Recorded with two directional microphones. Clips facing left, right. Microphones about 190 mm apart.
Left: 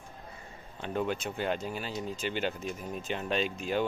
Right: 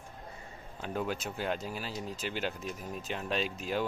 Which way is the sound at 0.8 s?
5° right (ahead or behind).